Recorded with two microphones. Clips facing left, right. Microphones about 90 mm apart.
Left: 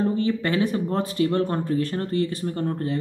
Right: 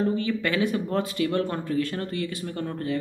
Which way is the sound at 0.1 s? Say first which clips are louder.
Left 3 dB; 35° left (ahead or behind).